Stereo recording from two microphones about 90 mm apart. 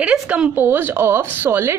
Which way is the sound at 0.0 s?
10° right (ahead or behind).